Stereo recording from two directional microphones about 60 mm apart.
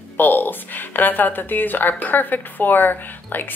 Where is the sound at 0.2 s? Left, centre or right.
Left.